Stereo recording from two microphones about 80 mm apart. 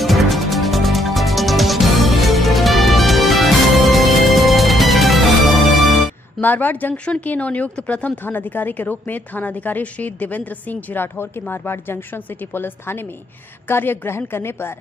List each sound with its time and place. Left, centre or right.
0.0 s music: centre
6.4 s speech: left